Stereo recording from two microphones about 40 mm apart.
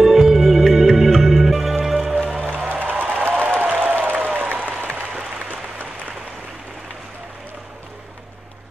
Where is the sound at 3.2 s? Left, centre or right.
Right.